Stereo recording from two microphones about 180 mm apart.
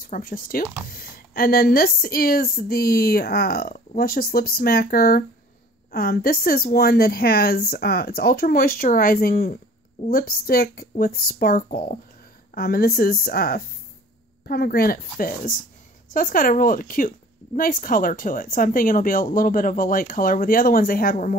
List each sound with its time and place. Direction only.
0.1 s a woman's voice: 50° left (ahead or behind)